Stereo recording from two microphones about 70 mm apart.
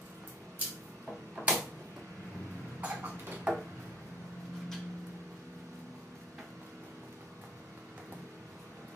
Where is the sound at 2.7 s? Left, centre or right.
Centre.